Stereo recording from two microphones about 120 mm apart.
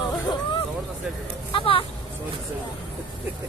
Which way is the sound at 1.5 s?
45° left (ahead or behind).